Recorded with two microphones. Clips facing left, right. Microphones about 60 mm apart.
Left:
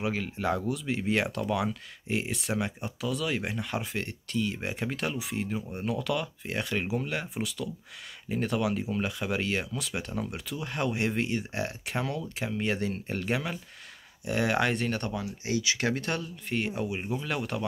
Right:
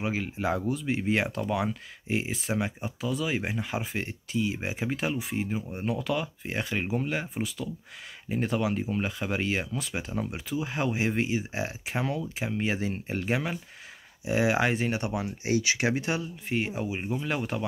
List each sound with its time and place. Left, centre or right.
0.0 s speech: centre
15.4 s speech: right
15.8 s speech: centre